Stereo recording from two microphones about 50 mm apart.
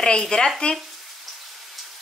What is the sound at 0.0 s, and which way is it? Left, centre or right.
Speech, centre.